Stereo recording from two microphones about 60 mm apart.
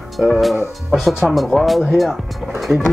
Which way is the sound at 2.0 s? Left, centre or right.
Centre.